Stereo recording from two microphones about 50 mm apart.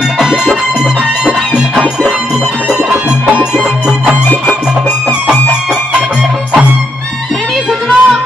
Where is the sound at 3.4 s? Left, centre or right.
Centre.